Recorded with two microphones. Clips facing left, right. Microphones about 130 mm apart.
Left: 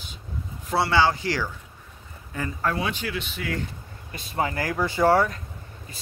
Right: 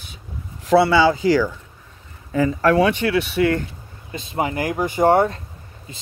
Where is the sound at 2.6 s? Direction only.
80° right.